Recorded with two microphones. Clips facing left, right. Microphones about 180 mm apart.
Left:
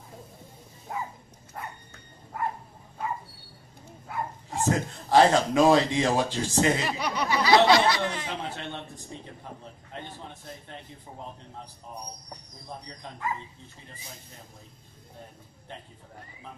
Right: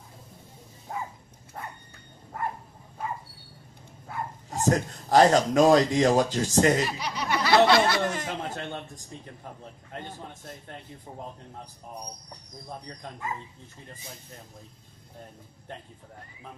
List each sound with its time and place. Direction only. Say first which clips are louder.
4.6 s a man's voice: right 2 dB; 40° right (ahead or behind)
7.0 s speech: left 4 dB; 55° left (ahead or behind)
7.2 s a sound: even; 55° right (ahead or behind)